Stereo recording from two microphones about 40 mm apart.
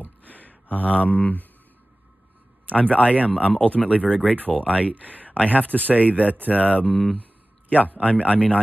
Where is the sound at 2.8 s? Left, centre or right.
Left.